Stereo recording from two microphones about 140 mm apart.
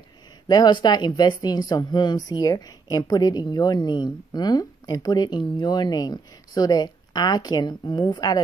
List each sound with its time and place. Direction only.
0.5 s speech: 30° left (ahead or behind)